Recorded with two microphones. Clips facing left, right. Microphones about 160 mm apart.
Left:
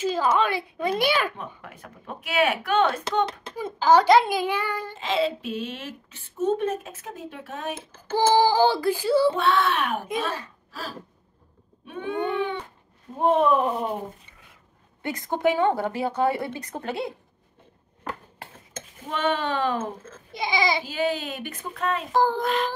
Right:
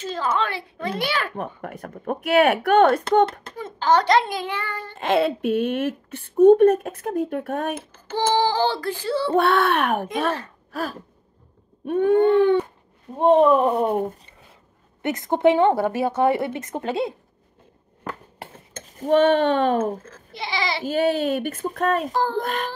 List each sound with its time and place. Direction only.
0.0 s a child's voice: 10° left (ahead or behind)
1.3 s speech: 50° right (ahead or behind)
3.5 s a child's voice: 10° left (ahead or behind)
4.9 s speech: 55° right (ahead or behind)
7.9 s a child's voice: 10° left (ahead or behind)
9.3 s speech: 55° right (ahead or behind)
13.2 s speech: 30° right (ahead or behind)
13.7 s speech: 60° right (ahead or behind)
15.0 s speech: 20° right (ahead or behind)
18.9 s speech: 45° right (ahead or behind)
20.3 s a child's voice: 15° left (ahead or behind)
20.8 s speech: 50° right (ahead or behind)
22.1 s a child's voice: 15° left (ahead or behind)
22.4 s speech: 50° right (ahead or behind)